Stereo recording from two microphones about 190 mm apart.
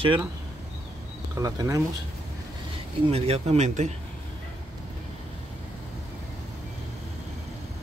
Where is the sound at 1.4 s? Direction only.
20° right (ahead or behind).